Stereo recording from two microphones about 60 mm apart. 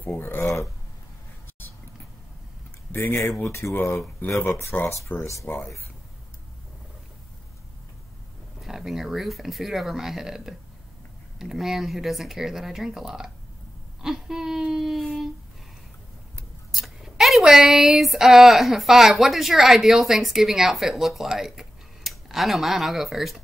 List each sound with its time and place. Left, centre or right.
0.2 s speech: left
2.9 s speech: left
3.4 s speech: left
4.7 s speech: left
8.5 s speech: centre
16.7 s speech: centre